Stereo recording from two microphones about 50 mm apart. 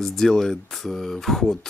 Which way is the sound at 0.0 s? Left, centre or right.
Centre.